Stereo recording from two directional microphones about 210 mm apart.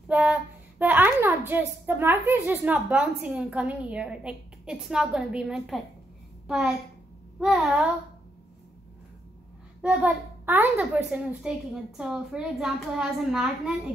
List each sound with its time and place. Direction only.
0.1 s a woman's voice: 5° right (ahead or behind)
9.8 s a woman's voice: 5° right (ahead or behind)